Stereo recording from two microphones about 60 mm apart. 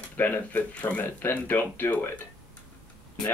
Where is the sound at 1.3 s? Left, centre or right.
Left.